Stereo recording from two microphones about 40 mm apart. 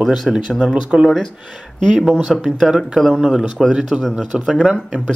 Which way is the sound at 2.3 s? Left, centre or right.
Centre.